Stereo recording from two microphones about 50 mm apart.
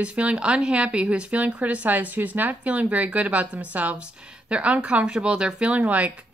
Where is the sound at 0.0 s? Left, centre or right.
Right.